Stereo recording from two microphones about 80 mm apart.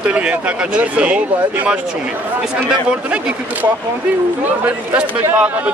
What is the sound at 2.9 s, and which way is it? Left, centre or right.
A man's voice, centre.